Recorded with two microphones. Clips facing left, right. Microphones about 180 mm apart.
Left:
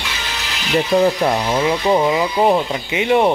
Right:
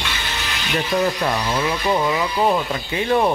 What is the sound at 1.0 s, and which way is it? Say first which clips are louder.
Speech: left 5 dB; 25° left (ahead or behind).